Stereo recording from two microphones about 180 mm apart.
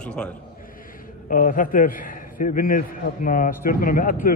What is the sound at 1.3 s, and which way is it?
A man's voice, 50° left (ahead or behind).